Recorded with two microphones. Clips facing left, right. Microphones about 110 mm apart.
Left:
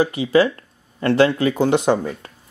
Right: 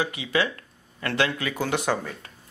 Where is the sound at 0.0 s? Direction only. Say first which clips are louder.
Left 9 dB; 35° left (ahead or behind).